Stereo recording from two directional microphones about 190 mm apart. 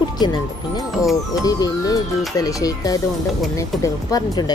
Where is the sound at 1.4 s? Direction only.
20° left (ahead or behind).